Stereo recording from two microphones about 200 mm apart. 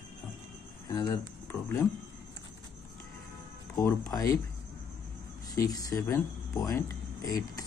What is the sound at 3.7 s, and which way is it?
Speech, 15° left (ahead or behind).